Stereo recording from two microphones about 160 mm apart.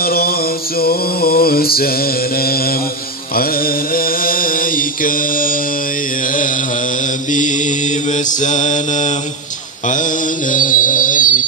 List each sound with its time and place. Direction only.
0.0 s mantra: 70° left (ahead or behind); by 11.4 s 55° left (ahead or behind)